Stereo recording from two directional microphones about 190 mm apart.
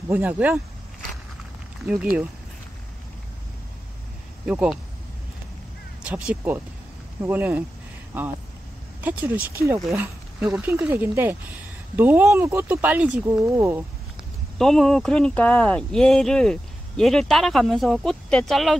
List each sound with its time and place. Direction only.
0.1 s speech: 10° right (ahead or behind)
1.9 s speech: 5° right (ahead or behind)
4.5 s speech: 5° right (ahead or behind)
6.0 s speech: 5° right (ahead or behind)
9.0 s speech: 10° right (ahead or behind)
14.6 s speech: centre (ahead or behind)